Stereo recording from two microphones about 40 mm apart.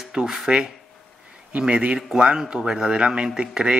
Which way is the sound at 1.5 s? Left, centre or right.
Right.